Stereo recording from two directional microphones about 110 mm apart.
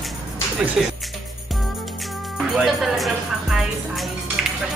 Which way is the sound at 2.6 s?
Centre (ahead or behind).